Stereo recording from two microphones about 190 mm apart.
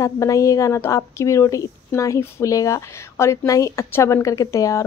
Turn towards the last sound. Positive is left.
turn(degrees=15)  # may be behind; listen again after turning